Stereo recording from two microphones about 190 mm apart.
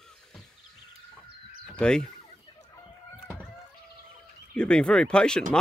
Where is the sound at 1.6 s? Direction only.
5° left (ahead or behind).